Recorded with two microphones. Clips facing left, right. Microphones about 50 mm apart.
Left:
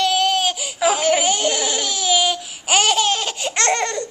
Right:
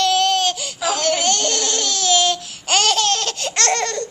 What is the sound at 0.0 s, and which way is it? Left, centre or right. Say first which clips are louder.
Laughter: right 1 dB; centre.